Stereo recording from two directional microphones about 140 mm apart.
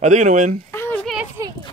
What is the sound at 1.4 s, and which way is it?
Speech, 20° right (ahead or behind).